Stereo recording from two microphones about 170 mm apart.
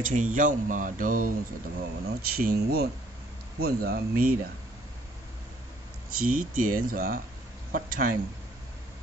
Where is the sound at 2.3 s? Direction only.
65° right (ahead or behind).